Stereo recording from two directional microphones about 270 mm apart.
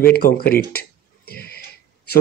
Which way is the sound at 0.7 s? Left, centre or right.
Left.